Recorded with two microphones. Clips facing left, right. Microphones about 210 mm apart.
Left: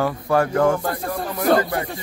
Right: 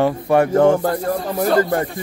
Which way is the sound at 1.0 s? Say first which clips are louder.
Right 3 dB; 45° right (ahead or behind).